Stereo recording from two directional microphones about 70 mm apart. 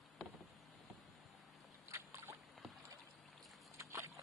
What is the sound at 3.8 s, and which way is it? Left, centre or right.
Boat, right.